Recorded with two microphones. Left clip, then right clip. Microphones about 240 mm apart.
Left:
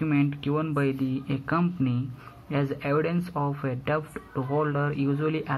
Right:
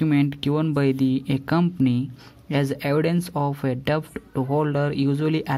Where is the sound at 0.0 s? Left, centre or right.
Right.